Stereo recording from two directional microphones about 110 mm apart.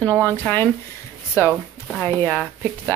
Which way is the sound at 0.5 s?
15° left (ahead or behind).